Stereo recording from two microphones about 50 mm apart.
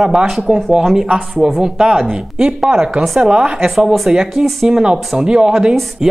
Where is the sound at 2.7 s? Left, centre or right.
Right.